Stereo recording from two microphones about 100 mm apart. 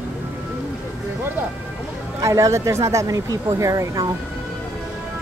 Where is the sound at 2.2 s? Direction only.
35° right (ahead or behind).